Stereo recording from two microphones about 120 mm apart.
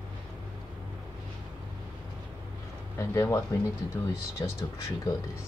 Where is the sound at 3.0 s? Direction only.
25° left (ahead or behind).